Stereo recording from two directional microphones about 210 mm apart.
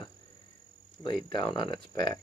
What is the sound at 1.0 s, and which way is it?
Speech, 20° left (ahead or behind).